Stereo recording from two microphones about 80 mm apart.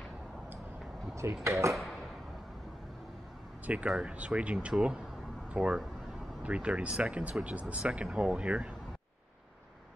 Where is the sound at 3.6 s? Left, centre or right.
Centre.